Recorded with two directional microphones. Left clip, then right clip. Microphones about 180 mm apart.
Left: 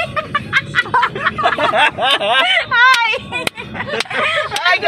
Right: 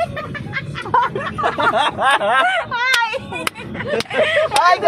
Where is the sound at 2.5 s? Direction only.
45° left (ahead or behind).